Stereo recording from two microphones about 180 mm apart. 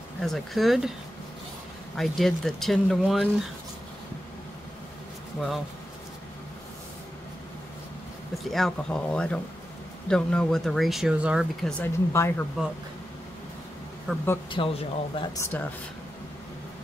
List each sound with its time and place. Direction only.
0.2 s speech: centre (ahead or behind)
2.0 s speech: centre (ahead or behind)
8.5 s speech: centre (ahead or behind)
11.8 s speech: 15° left (ahead or behind)
14.1 s speech: 5° right (ahead or behind)
14.5 s speech: 30° left (ahead or behind)
15.3 s speech: 15° left (ahead or behind)